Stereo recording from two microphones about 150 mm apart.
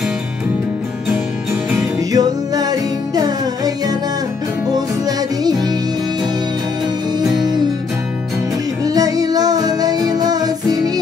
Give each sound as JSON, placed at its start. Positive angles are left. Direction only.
{"t": 1.8, "sound": "music", "side_deg": -25}
{"t": 7.3, "sound": "music", "side_deg": -25}
{"t": 8.8, "sound": "music", "side_deg": -25}